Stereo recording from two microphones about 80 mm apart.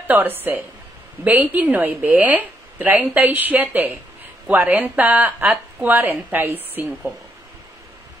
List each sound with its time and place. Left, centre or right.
0.0 s speech: right